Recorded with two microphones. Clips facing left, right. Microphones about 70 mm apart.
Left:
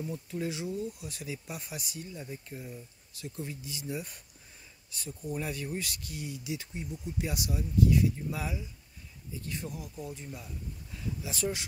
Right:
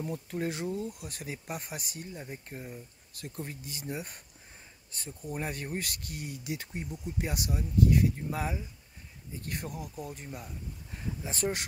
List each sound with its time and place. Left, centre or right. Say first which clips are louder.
0.0 s speech: right 1 dB; right
10.2 s speech: right 1 dB; right